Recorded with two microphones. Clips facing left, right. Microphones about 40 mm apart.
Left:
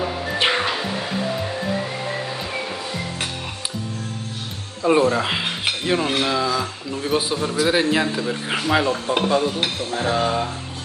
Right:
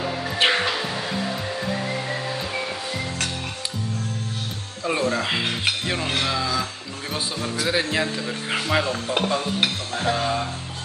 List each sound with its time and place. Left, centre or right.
0.4 s music: centre
4.8 s cutlery: centre